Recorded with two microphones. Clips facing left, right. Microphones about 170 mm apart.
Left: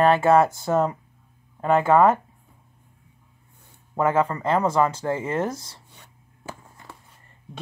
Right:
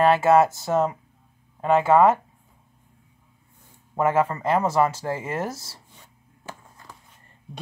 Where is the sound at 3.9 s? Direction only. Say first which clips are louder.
Even; 5° right (ahead or behind).